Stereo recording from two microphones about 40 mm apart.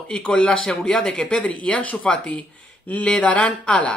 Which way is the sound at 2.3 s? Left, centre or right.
Left.